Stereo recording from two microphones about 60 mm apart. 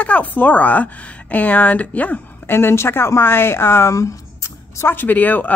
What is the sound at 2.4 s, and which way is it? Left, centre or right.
Speech, left.